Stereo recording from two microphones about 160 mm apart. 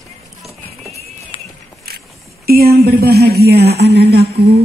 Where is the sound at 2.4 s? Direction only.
70° right (ahead or behind); by 4.3 s 90° right.